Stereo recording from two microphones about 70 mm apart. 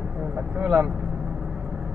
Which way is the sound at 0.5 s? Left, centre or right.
Centre.